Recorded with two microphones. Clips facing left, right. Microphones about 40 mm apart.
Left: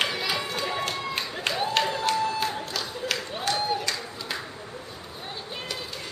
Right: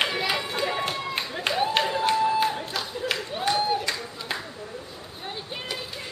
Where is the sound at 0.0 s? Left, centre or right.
Centre.